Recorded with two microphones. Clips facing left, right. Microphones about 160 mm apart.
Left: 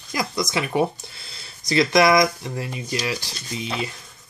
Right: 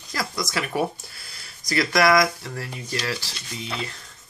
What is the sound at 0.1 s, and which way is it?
Speech, 20° left (ahead or behind).